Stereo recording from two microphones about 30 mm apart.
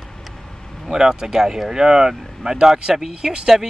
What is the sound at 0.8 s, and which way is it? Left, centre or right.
Speech, right.